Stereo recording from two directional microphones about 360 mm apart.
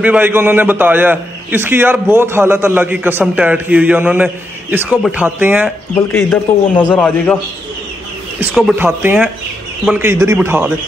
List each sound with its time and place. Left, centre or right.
0.0 s a man's voice: centre
6.1 s a man's voice: centre
8.4 s a man's voice: centre